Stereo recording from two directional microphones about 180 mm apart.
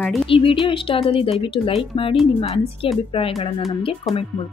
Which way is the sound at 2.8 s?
30° left (ahead or behind).